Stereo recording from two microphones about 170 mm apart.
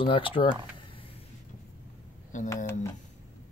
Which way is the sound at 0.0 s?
30° left (ahead or behind).